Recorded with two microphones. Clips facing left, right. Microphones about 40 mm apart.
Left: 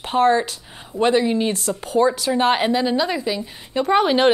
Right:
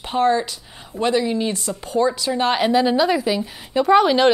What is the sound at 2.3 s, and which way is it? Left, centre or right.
Speech, left.